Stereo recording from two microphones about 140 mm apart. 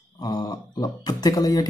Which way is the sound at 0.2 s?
25° left (ahead or behind).